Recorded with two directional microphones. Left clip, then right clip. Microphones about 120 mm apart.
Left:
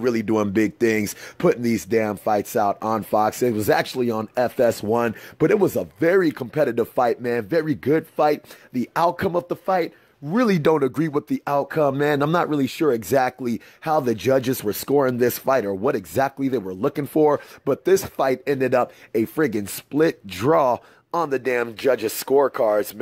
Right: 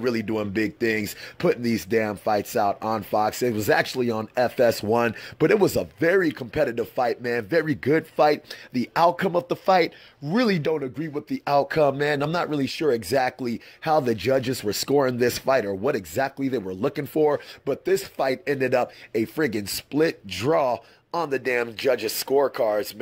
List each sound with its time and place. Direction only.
0.0 s speech: 30° left (ahead or behind)
9.7 s speech: 10° left (ahead or behind)
10.5 s speech: 55° left (ahead or behind); by 17.0 s 25° left (ahead or behind)
17.1 s speech: 40° left (ahead or behind)
18.4 s speech: 30° left (ahead or behind)